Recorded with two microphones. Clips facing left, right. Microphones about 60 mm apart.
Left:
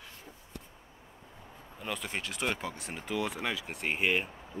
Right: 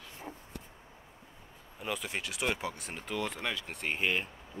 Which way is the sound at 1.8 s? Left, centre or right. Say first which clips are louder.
Even; centre.